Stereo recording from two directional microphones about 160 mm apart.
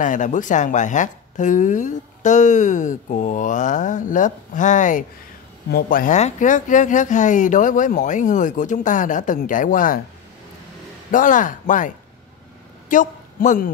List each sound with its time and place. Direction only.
0.0 s speech: 50° left (ahead or behind)
5.7 s speech: 65° left (ahead or behind)
11.1 s speech: 55° left (ahead or behind)
12.9 s speech: 55° left (ahead or behind)